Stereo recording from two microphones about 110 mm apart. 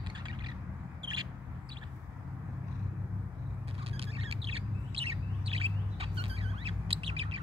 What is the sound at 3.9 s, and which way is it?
Bird, 60° right (ahead or behind).